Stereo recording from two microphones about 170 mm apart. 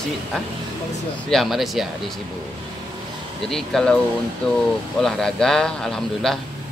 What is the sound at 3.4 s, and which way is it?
A man's voice, centre (ahead or behind).